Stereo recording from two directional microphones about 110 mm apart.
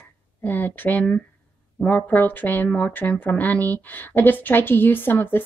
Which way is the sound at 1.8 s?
15° left (ahead or behind).